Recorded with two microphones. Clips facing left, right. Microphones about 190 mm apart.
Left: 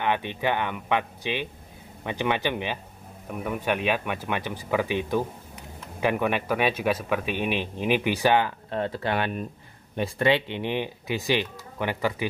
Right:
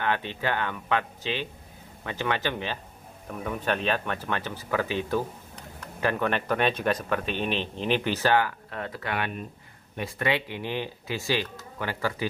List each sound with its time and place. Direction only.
0.0 s speech: 15° left (ahead or behind)